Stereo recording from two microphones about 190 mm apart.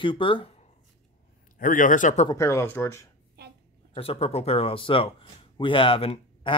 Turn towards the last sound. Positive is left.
turn(degrees=30)  # may be behind; listen again after turning